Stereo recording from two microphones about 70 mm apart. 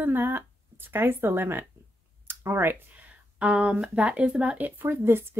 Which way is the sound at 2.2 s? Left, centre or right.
Right.